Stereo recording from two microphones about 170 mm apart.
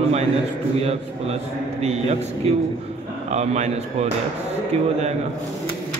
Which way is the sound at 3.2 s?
40° right (ahead or behind).